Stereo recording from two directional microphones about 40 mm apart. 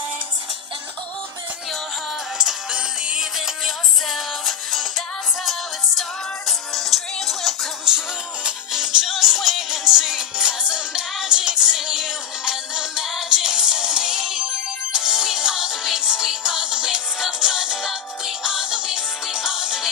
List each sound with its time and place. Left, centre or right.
2.7 s music: right
3.3 s music: centre
8.7 s music: centre